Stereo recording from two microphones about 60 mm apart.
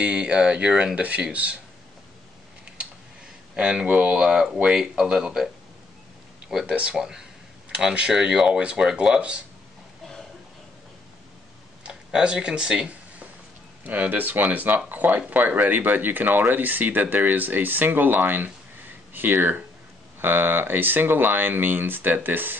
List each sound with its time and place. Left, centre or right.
0.0 s speech: centre
2.8 s a sound: centre
3.5 s speech: centre
6.6 s speech: right
7.0 s speech: centre
11.8 s speech: centre
13.8 s speech: right